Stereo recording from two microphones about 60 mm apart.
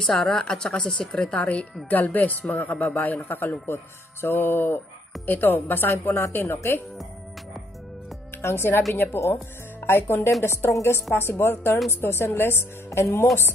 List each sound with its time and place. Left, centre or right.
0.0 s a man's voice: centre; by 6.8 s left
8.4 s a woman's voice: left